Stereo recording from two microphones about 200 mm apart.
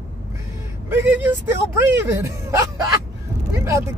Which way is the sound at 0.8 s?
10° right (ahead or behind).